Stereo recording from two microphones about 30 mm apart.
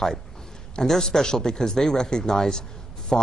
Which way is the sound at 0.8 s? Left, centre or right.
Centre.